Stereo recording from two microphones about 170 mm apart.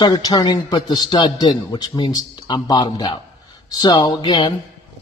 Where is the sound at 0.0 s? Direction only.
25° left (ahead or behind).